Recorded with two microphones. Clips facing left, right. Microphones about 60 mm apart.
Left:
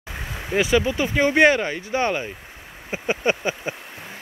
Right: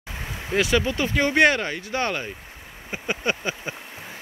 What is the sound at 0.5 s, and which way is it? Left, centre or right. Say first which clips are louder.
Speech: left 2 dB; centre.